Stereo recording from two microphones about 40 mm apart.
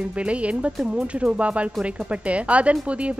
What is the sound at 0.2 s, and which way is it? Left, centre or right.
Speech, right.